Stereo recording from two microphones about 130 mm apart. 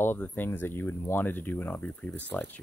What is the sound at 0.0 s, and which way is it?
Speech, 15° left (ahead or behind).